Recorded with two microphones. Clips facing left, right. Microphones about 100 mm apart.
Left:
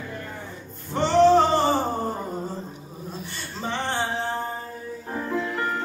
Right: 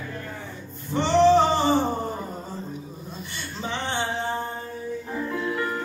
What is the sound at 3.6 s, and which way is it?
Music, centre (ahead or behind).